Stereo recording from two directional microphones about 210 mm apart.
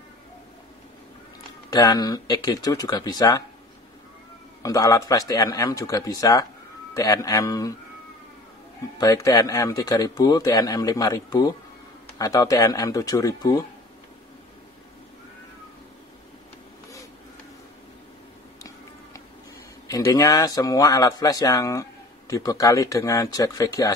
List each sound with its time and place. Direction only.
1.7 s a man's voice: 20° left (ahead or behind)
4.6 s a man's voice: 15° left (ahead or behind)
8.9 s a man's voice: 15° left (ahead or behind)
19.9 s a man's voice: 15° left (ahead or behind)